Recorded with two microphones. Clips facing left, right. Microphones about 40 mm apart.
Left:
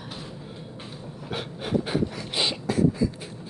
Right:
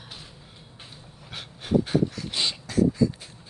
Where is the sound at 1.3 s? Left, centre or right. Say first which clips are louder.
Right 1 dB; centre.